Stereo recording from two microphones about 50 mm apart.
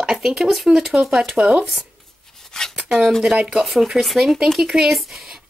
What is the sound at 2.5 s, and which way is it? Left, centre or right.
Speech, centre.